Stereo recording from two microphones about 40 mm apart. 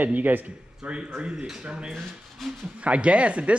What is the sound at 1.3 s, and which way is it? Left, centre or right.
Speech, centre.